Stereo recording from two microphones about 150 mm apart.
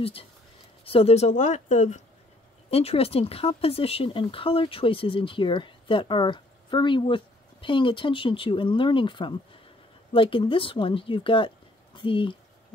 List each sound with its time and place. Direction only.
0.0 s speech: 40° left (ahead or behind)
2.7 s speech: 40° left (ahead or behind)